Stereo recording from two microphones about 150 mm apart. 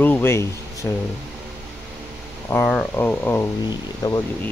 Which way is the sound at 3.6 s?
25° left (ahead or behind).